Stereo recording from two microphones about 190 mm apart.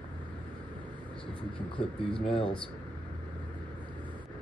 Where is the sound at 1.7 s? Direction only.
30° left (ahead or behind).